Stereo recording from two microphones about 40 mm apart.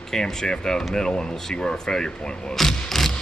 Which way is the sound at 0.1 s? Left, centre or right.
Centre.